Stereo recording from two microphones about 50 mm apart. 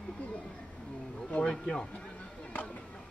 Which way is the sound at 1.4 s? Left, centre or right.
Centre.